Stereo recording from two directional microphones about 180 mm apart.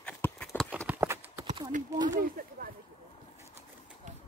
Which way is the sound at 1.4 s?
30° right (ahead or behind).